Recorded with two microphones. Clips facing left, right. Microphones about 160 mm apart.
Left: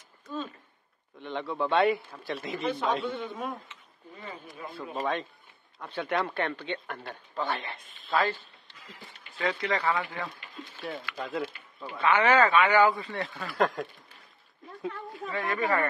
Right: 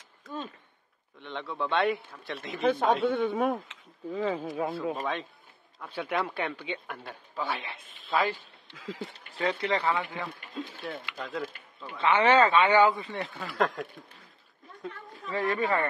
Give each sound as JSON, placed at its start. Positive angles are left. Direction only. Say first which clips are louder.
{"t": 1.2, "sound": "a man's voice", "louder": "left 3 dB", "side_deg": 0}
{"t": 2.6, "sound": "speech", "louder": "right 6 dB", "side_deg": -50}
{"t": 4.9, "sound": "a man's voice", "louder": "left 2 dB", "side_deg": 0}
{"t": 8.2, "sound": "a sound", "louder": "even", "side_deg": -15}
{"t": 8.7, "sound": "speech", "louder": "right 12 dB", "side_deg": -90}
{"t": 9.4, "sound": "a man's voice", "louder": "right 1 dB", "side_deg": -30}
{"t": 10.6, "sound": "speech", "louder": "right 9 dB", "side_deg": -90}
{"t": 11.1, "sound": "a man's voice", "louder": "left 2 dB", "side_deg": 5}
{"t": 12.0, "sound": "a man's voice", "louder": "right 1 dB", "side_deg": -30}
{"t": 13.6, "sound": "a man's voice", "louder": "left 1 dB", "side_deg": 0}
{"t": 15.3, "sound": "a man's voice", "louder": "right 1 dB", "side_deg": -30}